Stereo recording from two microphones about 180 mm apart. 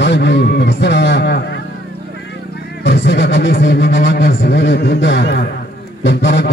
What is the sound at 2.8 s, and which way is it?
A man's voice, 80° left.